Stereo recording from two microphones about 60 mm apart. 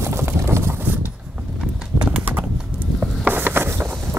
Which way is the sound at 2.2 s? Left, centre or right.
Right.